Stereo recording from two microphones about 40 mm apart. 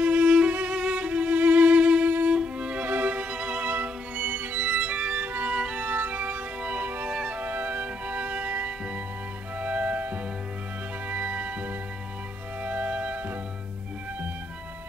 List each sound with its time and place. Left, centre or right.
0.0 s music: right
2.3 s violin: right
2.8 s music: right
3.6 s music: right
5.2 s music: right
5.5 s music: right
5.9 s music: right
7.1 s music: right
7.3 s music: right